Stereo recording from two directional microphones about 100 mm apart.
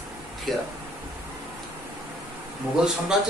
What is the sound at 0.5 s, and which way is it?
Speech, centre (ahead or behind).